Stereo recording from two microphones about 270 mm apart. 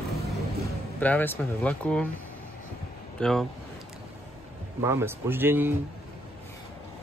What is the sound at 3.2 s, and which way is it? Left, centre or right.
Speech, centre.